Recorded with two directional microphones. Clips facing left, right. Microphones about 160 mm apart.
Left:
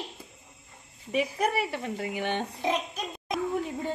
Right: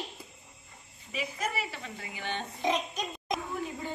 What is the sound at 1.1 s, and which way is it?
Speech, 60° left (ahead or behind).